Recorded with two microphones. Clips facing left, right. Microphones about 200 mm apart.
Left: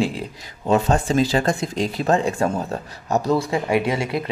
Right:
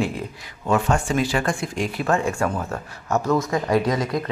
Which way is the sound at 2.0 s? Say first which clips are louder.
Left 2 dB; 20° left (ahead or behind).